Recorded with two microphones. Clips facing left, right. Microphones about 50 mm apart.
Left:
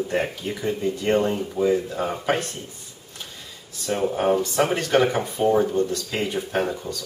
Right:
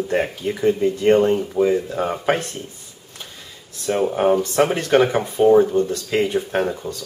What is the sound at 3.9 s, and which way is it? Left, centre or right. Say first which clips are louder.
Speech: right 4 dB; centre.